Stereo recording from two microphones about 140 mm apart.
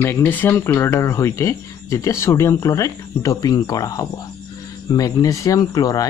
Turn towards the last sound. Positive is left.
turn(degrees=25)  # may be behind; listen again after turning